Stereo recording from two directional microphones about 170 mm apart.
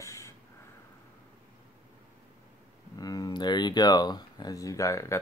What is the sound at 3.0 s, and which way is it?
Speech, 20° left (ahead or behind).